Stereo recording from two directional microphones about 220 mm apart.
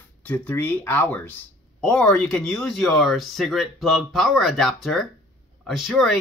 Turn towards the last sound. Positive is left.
turn(degrees=0)  # may be behind; listen again after turning